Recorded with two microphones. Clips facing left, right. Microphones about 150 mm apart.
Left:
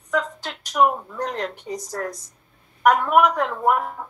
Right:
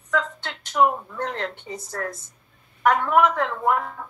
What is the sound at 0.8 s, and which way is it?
Speech, 10° left (ahead or behind).